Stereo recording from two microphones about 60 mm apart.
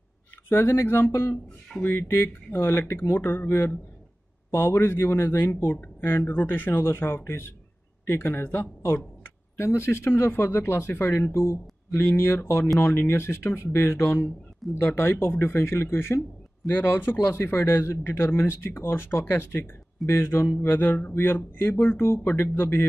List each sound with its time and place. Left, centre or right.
0.5 s a man's voice: left
9.6 s a man's voice: left
20.1 s speech: left
20.6 s a man's voice: left